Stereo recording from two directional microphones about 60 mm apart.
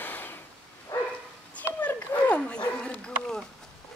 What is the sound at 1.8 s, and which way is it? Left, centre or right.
Dog, left.